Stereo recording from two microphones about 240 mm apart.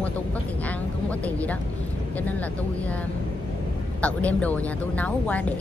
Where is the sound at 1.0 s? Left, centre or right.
Centre.